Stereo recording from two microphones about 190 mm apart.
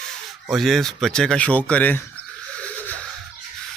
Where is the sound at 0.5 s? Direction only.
Centre (ahead or behind).